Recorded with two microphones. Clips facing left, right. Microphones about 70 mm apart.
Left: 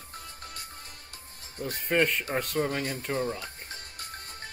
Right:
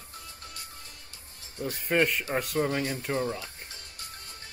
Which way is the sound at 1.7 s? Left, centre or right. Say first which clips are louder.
Even; centre.